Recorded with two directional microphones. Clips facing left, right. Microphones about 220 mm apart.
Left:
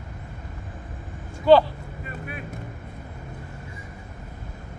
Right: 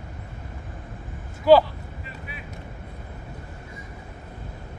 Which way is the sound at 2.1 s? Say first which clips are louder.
Left 8 dB; 50° left (ahead or behind).